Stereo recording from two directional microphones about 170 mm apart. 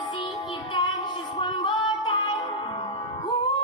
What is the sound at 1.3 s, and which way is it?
Female singing, 30° left (ahead or behind).